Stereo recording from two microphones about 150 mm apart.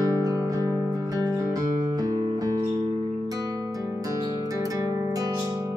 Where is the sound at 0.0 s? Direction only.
25° right (ahead or behind).